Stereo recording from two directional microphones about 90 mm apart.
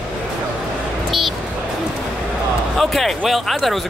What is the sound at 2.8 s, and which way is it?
Speech, centre (ahead or behind).